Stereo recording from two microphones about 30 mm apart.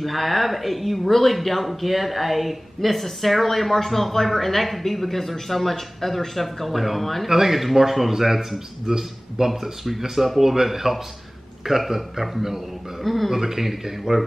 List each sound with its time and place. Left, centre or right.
0.0 s speech: centre
7.2 s speech: centre
9.5 s speech: centre
13.0 s speech: centre
13.3 s speech: centre